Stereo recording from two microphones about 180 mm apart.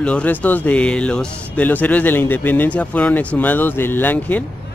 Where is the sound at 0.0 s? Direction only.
5° left (ahead or behind).